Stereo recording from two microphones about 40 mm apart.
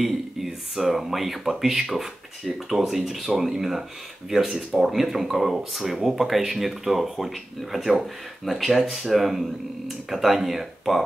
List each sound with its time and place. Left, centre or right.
0.0 s speech: centre